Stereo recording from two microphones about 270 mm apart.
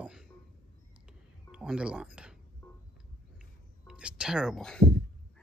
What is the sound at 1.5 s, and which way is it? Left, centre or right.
Speech, centre.